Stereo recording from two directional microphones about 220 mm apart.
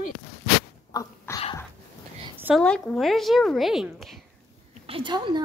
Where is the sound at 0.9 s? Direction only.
15° left (ahead or behind).